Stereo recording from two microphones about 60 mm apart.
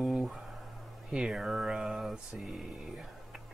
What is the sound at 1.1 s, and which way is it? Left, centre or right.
Speech, centre.